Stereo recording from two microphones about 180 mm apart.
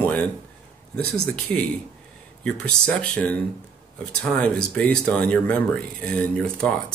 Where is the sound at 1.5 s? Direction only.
5° left (ahead or behind).